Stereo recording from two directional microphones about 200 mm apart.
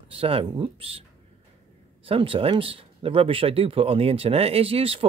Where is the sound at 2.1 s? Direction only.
25° right (ahead or behind).